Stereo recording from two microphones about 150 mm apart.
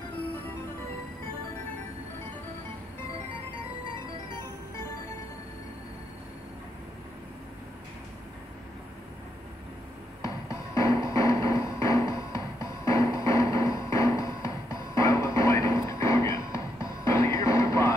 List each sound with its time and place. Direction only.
10.2 s music: 20° left (ahead or behind)